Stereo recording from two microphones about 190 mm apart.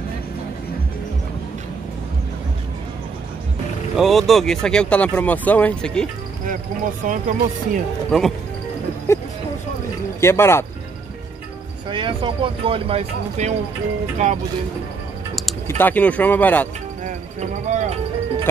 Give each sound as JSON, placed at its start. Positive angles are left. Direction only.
{"t": 3.9, "sound": "speech", "side_deg": 0}
{"t": 7.1, "sound": "speech", "side_deg": -45}
{"t": 8.1, "sound": "speech", "side_deg": 0}
{"t": 9.1, "sound": "speech", "side_deg": 15}
{"t": 11.9, "sound": "speech", "side_deg": -25}
{"t": 15.6, "sound": "speech", "side_deg": 10}
{"t": 17.0, "sound": "a sound", "side_deg": -40}